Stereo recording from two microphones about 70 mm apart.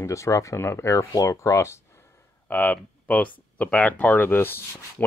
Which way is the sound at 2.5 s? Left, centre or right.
Left.